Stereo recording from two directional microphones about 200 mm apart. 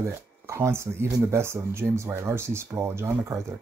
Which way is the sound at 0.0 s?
15° right (ahead or behind).